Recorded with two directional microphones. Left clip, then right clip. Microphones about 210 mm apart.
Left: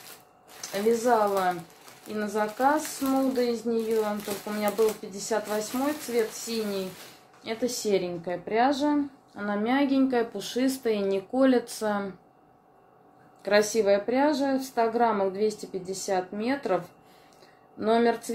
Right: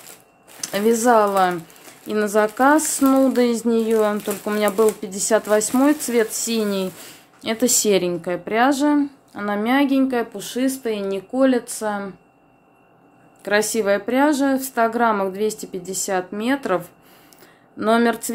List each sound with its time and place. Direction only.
0.6 s speech: 55° right (ahead or behind)
3.0 s a sound: 45° right (ahead or behind)
3.3 s speech: 55° right (ahead or behind); by 12.1 s 10° right (ahead or behind)
13.4 s speech: 20° right (ahead or behind)